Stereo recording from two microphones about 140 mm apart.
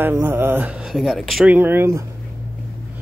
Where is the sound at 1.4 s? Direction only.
15° right (ahead or behind).